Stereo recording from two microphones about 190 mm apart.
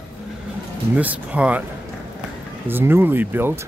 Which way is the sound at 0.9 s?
10° right (ahead or behind).